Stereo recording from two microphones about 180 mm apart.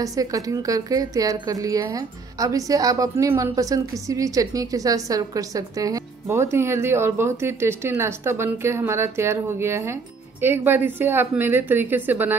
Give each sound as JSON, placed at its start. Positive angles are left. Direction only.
{"t": 0.0, "sound": "a woman's voice", "side_deg": -20}